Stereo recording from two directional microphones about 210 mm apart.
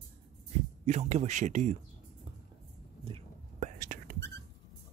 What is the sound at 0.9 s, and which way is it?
Speech, 30° right (ahead or behind).